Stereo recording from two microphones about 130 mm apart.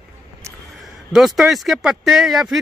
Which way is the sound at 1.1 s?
Centre (ahead or behind).